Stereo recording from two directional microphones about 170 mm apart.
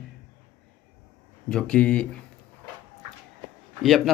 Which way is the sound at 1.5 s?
5° left (ahead or behind).